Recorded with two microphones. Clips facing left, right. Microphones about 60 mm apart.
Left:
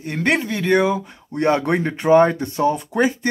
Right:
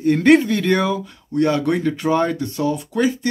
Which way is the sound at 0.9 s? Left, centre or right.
Left.